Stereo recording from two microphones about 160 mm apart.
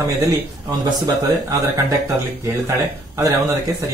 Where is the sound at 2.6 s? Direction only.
20° right (ahead or behind).